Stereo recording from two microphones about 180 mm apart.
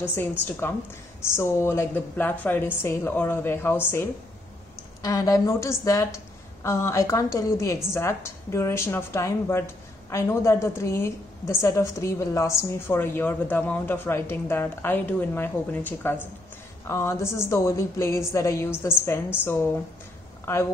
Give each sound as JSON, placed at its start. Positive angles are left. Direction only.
{"t": 0.0, "sound": "a woman's voice", "side_deg": 10}